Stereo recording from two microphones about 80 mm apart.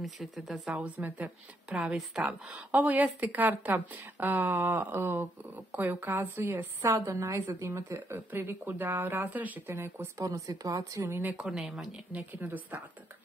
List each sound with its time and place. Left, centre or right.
0.0 s speech: centre
0.7 s a woman's voice: centre
2.5 s a woman's voice: centre; by 8.0 s right
8.1 s speech: right
9.8 s speech: right
11.0 s speech: right
11.4 s speech: centre
12.1 s speech: right